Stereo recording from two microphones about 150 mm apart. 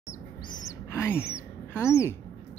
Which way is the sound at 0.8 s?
15° left (ahead or behind).